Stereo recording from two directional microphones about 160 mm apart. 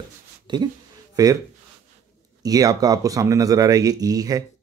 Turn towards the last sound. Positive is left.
turn(degrees=-25)  # may be behind; listen again after turning